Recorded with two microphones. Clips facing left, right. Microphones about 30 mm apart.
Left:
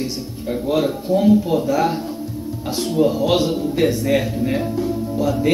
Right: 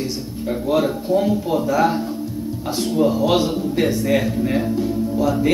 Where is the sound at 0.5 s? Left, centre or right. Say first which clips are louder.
Even; centre.